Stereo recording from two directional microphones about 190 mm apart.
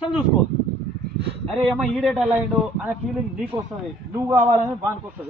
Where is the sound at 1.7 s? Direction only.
Centre (ahead or behind).